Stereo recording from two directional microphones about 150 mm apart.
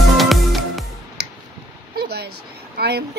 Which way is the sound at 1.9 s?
90° right.